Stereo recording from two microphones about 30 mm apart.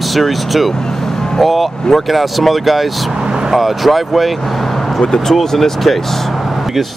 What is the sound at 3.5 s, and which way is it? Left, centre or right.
Speech, centre.